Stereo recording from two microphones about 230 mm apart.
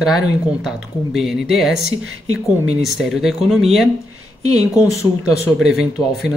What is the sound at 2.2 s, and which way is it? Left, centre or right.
Speech, right.